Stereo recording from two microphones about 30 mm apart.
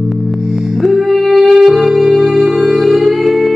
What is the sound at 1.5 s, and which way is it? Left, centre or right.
Music, right.